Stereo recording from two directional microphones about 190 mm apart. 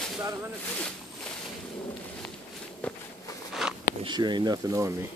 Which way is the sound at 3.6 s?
Centre (ahead or behind).